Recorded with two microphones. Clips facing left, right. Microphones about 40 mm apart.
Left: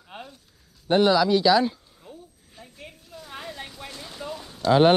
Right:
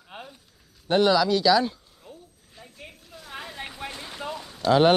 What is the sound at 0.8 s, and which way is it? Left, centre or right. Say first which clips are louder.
Speech: left 1 dB; centre.